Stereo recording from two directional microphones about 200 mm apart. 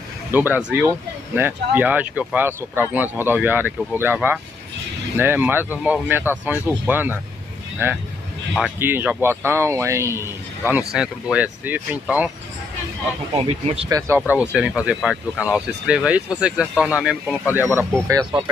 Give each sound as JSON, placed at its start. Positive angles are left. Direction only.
{"t": 0.3, "sound": "speech", "side_deg": -10}
{"t": 8.5, "sound": "speech", "side_deg": -5}
{"t": 13.3, "sound": "speech", "side_deg": -30}
{"t": 13.8, "sound": "speech", "side_deg": -15}
{"t": 14.3, "sound": "speech", "side_deg": -5}
{"t": 18.0, "sound": "speech", "side_deg": -15}